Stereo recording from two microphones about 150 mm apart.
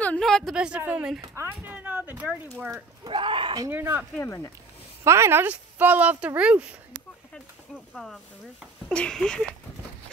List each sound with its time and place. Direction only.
0.0 s speech: 5° left (ahead or behind)
1.2 s speech: 20° right (ahead or behind)
3.1 s speech: 35° right (ahead or behind)
3.6 s speech: 15° right (ahead or behind)
4.2 s speech: 20° left (ahead or behind)
5.0 s speech: 20° right (ahead or behind)
7.9 s speech: centre (ahead or behind)